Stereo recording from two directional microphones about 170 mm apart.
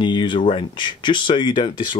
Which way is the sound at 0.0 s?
25° left (ahead or behind).